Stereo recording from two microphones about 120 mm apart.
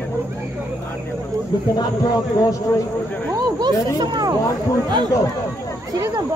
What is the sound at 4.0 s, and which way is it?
Speech, 35° right (ahead or behind).